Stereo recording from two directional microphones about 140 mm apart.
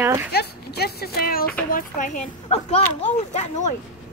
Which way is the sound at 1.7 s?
70° left (ahead or behind).